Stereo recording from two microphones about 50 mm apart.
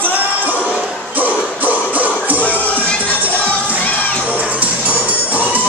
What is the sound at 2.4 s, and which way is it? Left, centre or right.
Music, left.